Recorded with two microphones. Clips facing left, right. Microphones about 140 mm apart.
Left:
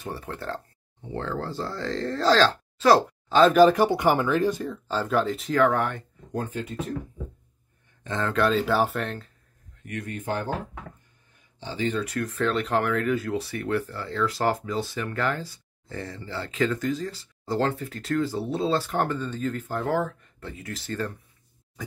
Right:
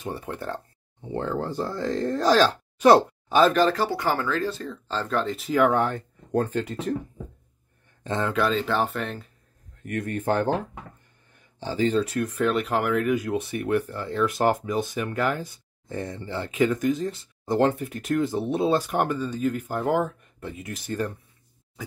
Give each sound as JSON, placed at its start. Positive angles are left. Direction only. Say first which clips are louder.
{"t": 0.0, "sound": "speech", "louder": "right 2 dB", "side_deg": -20}
{"t": 3.5, "sound": "speech", "louder": "left 5 dB", "side_deg": 15}
{"t": 5.6, "sound": "speech", "louder": "right 1 dB", "side_deg": -25}
{"t": 6.3, "sound": "speech", "louder": "right 5 dB", "side_deg": -70}
{"t": 8.4, "sound": "speech", "louder": "left 3 dB", "side_deg": 0}
{"t": 9.8, "sound": "speech", "louder": "right 5 dB", "side_deg": -50}
{"t": 11.6, "sound": "speech", "louder": "right 5 dB", "side_deg": -40}
{"t": 12.2, "sound": "speech", "louder": "right 2 dB", "side_deg": -15}